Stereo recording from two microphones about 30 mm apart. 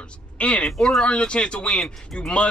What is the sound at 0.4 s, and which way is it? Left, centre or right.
Speech, left.